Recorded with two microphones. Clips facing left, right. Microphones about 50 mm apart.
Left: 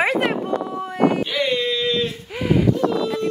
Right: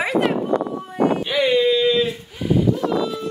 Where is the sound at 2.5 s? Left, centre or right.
Left.